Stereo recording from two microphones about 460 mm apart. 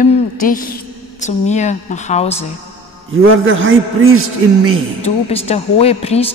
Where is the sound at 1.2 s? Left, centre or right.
Centre.